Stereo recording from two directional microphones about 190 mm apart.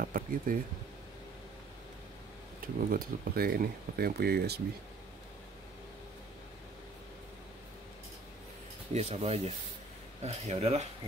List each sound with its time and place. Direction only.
0.0 s speech: 50° right (ahead or behind)
2.6 s speech: 50° right (ahead or behind)
8.9 s speech: 35° right (ahead or behind)